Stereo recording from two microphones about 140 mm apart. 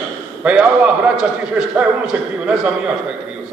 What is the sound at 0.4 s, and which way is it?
Speech, 10° right (ahead or behind).